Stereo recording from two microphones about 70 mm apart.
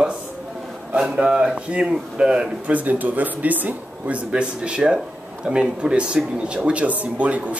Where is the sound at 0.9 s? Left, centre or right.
Centre.